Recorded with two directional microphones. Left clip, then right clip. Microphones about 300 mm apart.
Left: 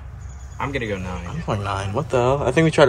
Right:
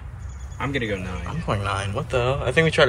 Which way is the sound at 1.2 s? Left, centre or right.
Centre.